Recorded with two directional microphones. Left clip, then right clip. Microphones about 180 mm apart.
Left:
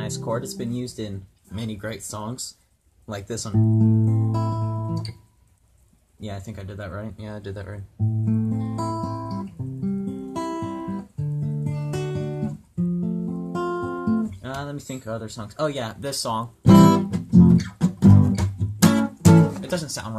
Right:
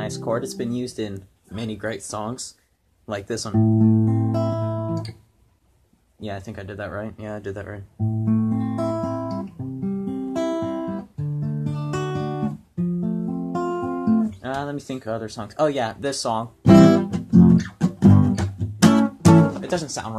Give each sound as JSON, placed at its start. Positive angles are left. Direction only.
{"t": 0.1, "sound": "speech", "side_deg": 15}
{"t": 3.5, "sound": "music", "side_deg": 0}
{"t": 6.2, "sound": "speech", "side_deg": 15}
{"t": 8.3, "sound": "music", "side_deg": 0}
{"t": 14.4, "sound": "speech", "side_deg": 15}
{"t": 16.6, "sound": "music", "side_deg": 0}
{"t": 19.7, "sound": "speech", "side_deg": 20}